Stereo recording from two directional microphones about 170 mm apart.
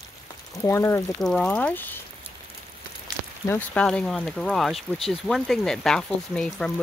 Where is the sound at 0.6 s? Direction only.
15° left (ahead or behind).